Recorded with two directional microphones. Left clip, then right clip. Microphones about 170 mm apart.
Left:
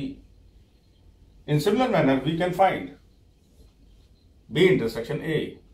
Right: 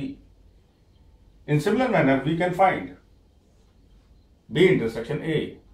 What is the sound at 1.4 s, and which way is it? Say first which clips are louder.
Speech: even; 10° right (ahead or behind).